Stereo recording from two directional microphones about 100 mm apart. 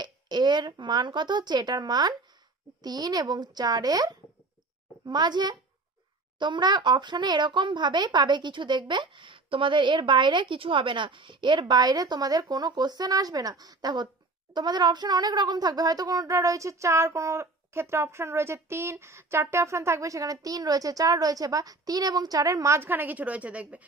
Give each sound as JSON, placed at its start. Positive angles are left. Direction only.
{"t": 0.0, "sound": "a woman's voice", "side_deg": -45}